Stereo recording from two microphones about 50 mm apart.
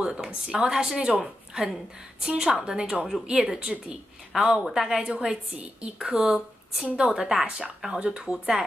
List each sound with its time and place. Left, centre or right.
0.0 s a woman's voice: centre